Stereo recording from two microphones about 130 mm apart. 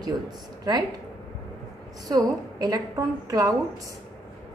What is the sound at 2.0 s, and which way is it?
A woman's voice, 30° right (ahead or behind).